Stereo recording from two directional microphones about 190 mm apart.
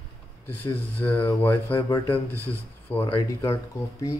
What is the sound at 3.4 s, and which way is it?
Speech, 15° left (ahead or behind).